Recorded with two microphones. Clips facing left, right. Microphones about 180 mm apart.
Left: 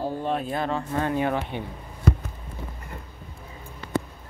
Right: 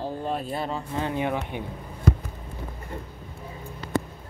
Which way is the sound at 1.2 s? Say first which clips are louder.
Left 2 dB; 15° right (ahead or behind).